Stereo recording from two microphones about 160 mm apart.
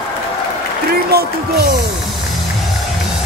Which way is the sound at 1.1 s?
75° right (ahead or behind).